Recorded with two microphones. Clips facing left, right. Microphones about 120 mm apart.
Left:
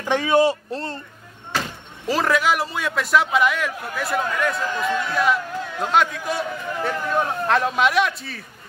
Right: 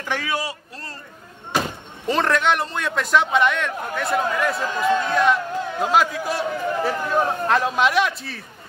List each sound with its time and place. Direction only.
0.0 s speech: 20° left (ahead or behind)
1.5 s slam: 15° right (ahead or behind)
2.0 s a man's voice: 5° left (ahead or behind)